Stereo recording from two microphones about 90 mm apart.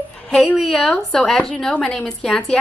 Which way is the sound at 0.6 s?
Centre (ahead or behind).